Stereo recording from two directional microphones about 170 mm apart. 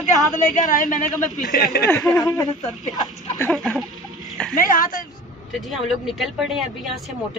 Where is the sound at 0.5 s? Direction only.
50° left (ahead or behind).